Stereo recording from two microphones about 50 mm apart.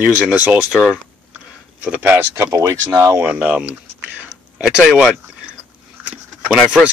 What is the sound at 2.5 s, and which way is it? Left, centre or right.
Speech, right.